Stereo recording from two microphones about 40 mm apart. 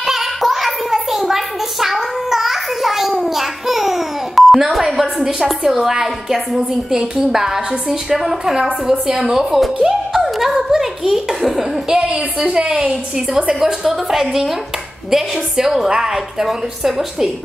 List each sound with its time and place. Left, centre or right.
0.0 s a child's voice: centre
9.8 s a sound: centre
10.2 s giggle: centre
12.4 s a woman's voice: centre